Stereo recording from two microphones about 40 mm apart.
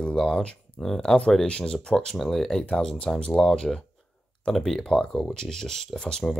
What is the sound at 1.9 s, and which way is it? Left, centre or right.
Speech, centre.